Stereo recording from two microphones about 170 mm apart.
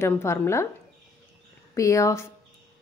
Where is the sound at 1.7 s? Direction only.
20° left (ahead or behind).